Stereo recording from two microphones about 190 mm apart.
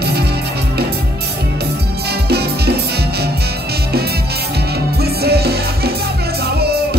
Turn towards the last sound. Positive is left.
turn(degrees=-55)  # may be behind; listen again after turning